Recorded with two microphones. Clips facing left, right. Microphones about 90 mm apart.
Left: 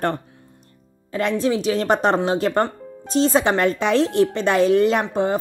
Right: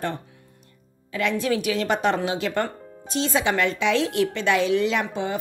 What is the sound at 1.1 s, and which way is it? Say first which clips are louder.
A woman's voice: left 3 dB; 35° left (ahead or behind).